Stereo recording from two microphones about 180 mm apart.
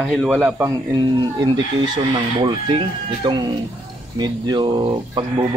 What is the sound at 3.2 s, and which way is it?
Speech, 25° right (ahead or behind).